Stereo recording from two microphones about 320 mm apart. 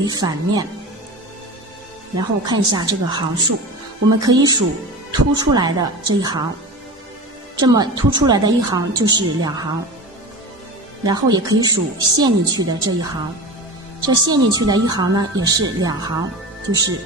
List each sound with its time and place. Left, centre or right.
0.0 s a woman's voice: centre
2.1 s a woman's voice: centre
7.5 s a woman's voice: centre
11.1 s a woman's voice: centre